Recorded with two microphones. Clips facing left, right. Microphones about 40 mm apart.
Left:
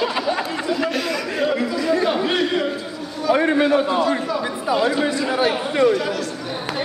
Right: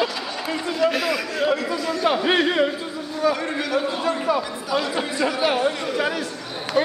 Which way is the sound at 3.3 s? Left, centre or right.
Left.